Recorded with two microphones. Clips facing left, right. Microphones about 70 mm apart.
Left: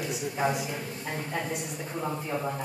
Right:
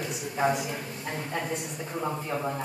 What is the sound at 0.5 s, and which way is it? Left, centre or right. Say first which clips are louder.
Speech: right 1 dB; centre.